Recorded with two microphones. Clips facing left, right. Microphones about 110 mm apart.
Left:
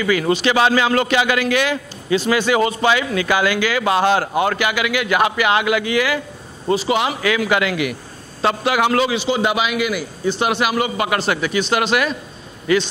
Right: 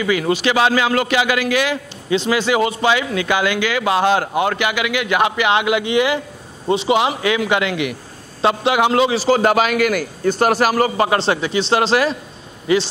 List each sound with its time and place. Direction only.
0.0 s a man's voice: 15° right (ahead or behind)
9.1 s a man's voice: 40° right (ahead or behind)